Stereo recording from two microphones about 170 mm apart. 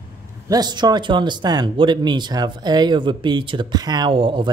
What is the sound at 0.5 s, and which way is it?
Speech, 25° right (ahead or behind).